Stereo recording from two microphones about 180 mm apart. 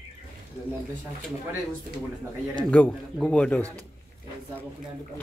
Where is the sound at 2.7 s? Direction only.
5° left (ahead or behind).